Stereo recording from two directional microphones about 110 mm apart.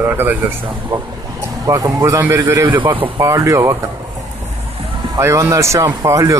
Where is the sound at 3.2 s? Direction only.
30° right (ahead or behind).